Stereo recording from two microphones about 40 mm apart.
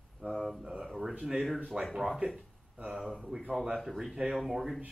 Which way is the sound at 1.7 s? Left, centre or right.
Right.